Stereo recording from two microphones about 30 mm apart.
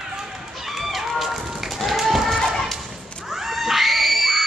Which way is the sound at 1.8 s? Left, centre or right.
Centre.